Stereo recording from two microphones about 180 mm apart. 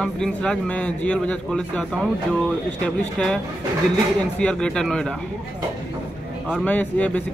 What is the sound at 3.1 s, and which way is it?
Speech, 5° left (ahead or behind).